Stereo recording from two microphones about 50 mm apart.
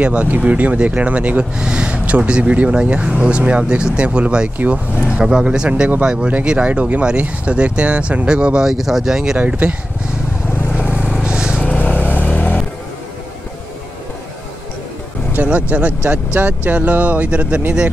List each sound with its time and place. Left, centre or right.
0.0 s speech: right
8.6 s speech: centre
10.9 s vehicle: right
11.8 s vehicle: left
15.3 s a sound: right
16.3 s speech: right